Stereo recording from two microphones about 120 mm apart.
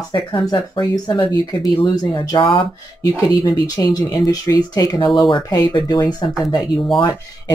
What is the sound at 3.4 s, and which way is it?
Speech, 30° left (ahead or behind).